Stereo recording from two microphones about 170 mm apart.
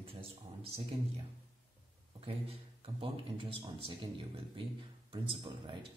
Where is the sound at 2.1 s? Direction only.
35° right (ahead or behind).